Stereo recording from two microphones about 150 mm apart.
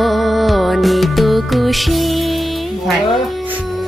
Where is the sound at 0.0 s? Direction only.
Centre (ahead or behind).